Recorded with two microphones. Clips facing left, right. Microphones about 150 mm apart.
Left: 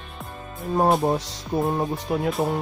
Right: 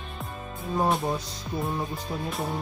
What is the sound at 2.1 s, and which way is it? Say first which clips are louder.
Speech: left 10 dB; 75° left (ahead or behind).